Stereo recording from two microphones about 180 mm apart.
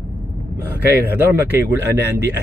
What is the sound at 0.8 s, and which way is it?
Speech, 65° right (ahead or behind).